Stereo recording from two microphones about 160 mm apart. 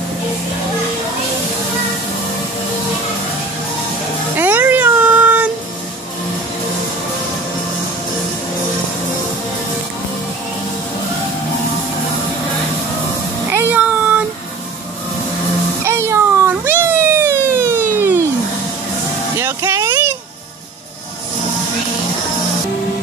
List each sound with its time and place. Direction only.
4.4 s cat: 10° right (ahead or behind)
13.5 s cat: 10° right (ahead or behind)
15.8 s emergency vehicle: 15° right (ahead or behind)
19.4 s vehicle: 15° right (ahead or behind)